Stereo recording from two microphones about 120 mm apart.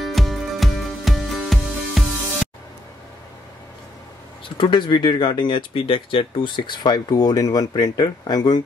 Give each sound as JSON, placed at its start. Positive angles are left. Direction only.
{"t": 0.0, "sound": "music", "side_deg": 0}
{"t": 4.6, "sound": "speech", "side_deg": 40}